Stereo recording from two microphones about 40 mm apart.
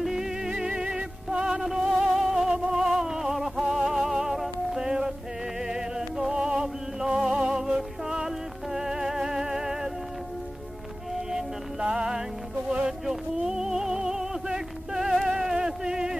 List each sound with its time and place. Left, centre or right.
0.0 s music: centre
11.8 s music: centre